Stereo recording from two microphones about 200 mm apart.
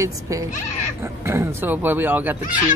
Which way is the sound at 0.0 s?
15° right (ahead or behind).